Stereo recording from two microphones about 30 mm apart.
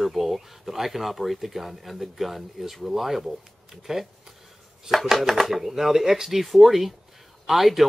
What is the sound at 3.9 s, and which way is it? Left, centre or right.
Speech, centre.